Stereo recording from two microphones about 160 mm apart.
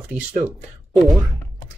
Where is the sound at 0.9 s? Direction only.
Centre (ahead or behind).